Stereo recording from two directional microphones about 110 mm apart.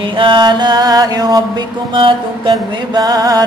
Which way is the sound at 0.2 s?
45° right (ahead or behind).